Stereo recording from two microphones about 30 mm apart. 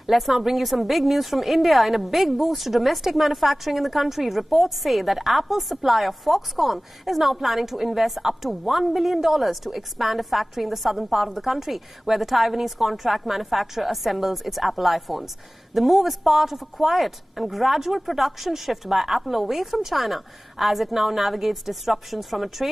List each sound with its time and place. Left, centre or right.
0.1 s a woman's voice: centre
8.2 s a woman's voice: centre
8.5 s a woman's voice: centre